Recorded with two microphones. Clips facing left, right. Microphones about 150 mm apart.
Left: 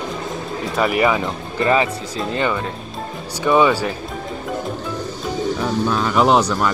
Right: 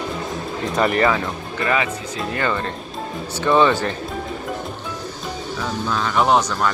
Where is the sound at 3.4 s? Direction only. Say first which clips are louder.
Left 1 dB; 10° left (ahead or behind).